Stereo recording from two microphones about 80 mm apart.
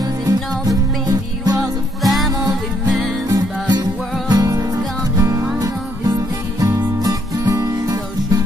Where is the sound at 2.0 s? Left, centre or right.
Centre.